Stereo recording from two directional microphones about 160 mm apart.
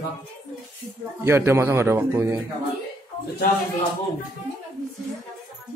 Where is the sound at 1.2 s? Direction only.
15° right (ahead or behind).